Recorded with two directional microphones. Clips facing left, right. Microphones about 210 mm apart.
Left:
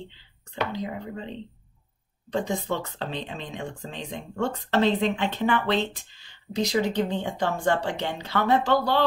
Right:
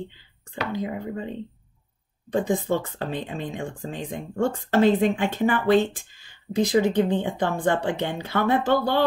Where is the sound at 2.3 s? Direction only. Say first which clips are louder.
Right 4 dB; 50° right (ahead or behind).